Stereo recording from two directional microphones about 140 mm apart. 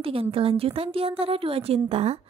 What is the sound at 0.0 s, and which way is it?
A woman's voice, 40° right (ahead or behind).